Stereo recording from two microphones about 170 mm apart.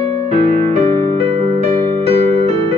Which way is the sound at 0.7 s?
35° right (ahead or behind).